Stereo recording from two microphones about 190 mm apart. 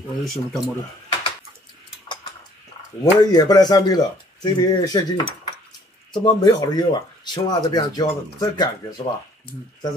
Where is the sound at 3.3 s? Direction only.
20° left (ahead or behind).